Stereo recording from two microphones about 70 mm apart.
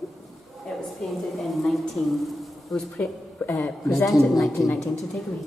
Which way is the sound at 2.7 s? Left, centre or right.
Centre.